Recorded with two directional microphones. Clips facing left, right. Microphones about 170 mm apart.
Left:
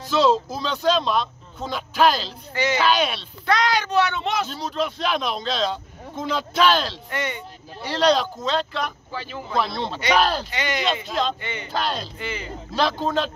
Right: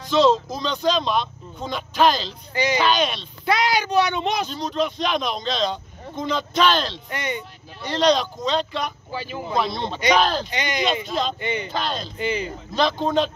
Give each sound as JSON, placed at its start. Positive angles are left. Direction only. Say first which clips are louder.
{"t": 0.0, "sound": "a man's voice", "louder": "right 2 dB", "side_deg": 5}
{"t": 2.5, "sound": "speech", "louder": "right 1 dB", "side_deg": -15}
{"t": 2.8, "sound": "a man's voice", "louder": "even", "side_deg": 5}
{"t": 3.4, "sound": "speech", "louder": "even", "side_deg": -10}
{"t": 4.5, "sound": "a man's voice", "louder": "right 2 dB", "side_deg": 5}
{"t": 7.1, "sound": "speech", "louder": "even", "side_deg": -15}
{"t": 7.8, "sound": "a man's voice", "louder": "even", "side_deg": 5}
{"t": 9.1, "sound": "speech", "louder": "right 2 dB", "side_deg": -15}
{"t": 9.6, "sound": "a man's voice", "louder": "even", "side_deg": 5}
{"t": 10.5, "sound": "speech", "louder": "right 1 dB", "side_deg": -15}
{"t": 11.1, "sound": "a man's voice", "louder": "right 1 dB", "side_deg": 0}
{"t": 12.2, "sound": "speech", "louder": "right 7 dB", "side_deg": -15}
{"t": 12.7, "sound": "a man's voice", "louder": "right 2 dB", "side_deg": 5}